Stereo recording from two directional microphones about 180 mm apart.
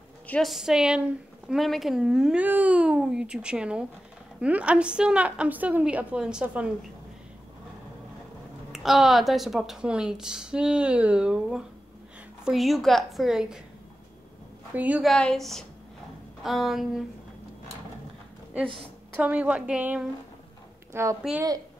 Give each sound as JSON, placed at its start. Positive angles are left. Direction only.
{"t": 0.3, "sound": "a woman's voice", "side_deg": 0}
{"t": 8.7, "sound": "a woman's voice", "side_deg": 0}
{"t": 14.7, "sound": "a woman's voice", "side_deg": -10}
{"t": 19.1, "sound": "a woman's voice", "side_deg": -10}